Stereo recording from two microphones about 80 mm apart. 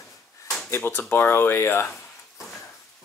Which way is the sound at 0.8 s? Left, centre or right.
Left.